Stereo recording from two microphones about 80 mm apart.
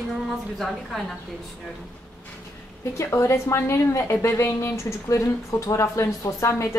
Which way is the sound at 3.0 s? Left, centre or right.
Left.